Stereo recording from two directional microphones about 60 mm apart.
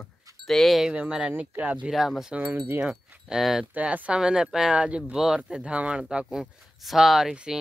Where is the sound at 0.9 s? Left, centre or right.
Centre.